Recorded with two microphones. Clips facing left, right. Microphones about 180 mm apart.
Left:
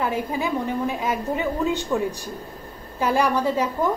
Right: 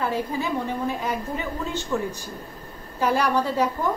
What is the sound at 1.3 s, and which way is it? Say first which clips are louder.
Speech: left 6 dB; 15° left (ahead or behind).